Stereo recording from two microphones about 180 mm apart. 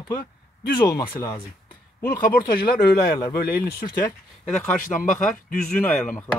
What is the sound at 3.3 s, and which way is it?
Speech, 55° left (ahead or behind).